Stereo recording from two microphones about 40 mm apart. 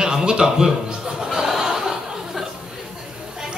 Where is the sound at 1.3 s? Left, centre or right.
Centre.